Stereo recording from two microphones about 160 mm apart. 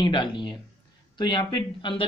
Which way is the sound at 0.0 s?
30° left (ahead or behind).